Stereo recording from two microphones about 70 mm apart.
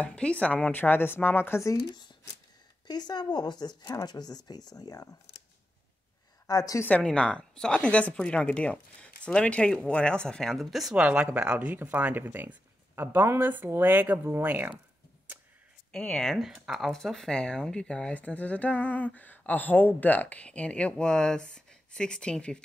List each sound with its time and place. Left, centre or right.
0.0 s speech: centre
1.9 s speech: left
6.4 s a woman's voice: left
7.0 s speech: centre
11.0 s speech: centre
16.0 s speech: centre
16.3 s speech: centre
16.9 s speech: centre